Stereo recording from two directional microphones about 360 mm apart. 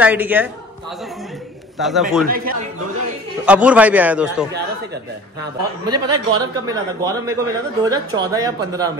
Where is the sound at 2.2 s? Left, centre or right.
Right.